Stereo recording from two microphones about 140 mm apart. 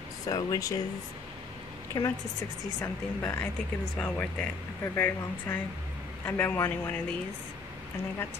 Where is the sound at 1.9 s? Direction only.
30° left (ahead or behind).